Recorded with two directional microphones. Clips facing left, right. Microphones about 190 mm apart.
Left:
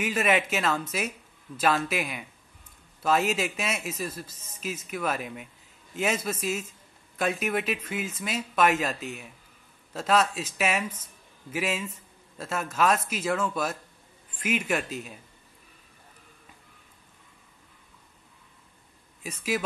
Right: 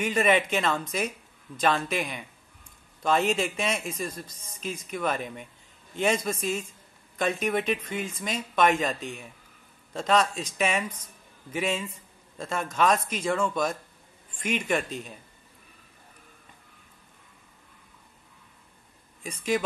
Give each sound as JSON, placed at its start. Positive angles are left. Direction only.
{"t": 0.0, "sound": "a man's voice", "side_deg": 5}
{"t": 19.2, "sound": "speech", "side_deg": 5}